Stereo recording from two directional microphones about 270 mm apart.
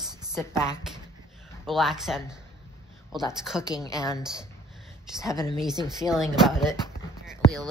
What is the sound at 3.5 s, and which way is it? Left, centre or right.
Speech, centre.